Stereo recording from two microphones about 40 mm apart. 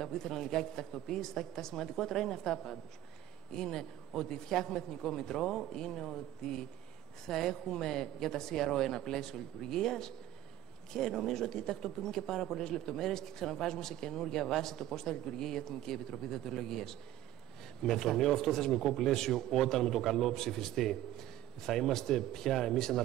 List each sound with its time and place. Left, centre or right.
0.0 s speech: centre